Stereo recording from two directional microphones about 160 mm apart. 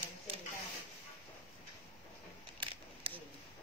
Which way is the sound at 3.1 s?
35° right (ahead or behind).